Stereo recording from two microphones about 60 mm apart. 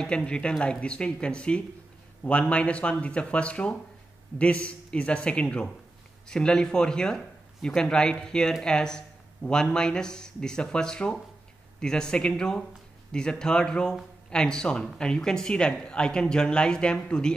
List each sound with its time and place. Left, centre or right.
0.0 s speech: centre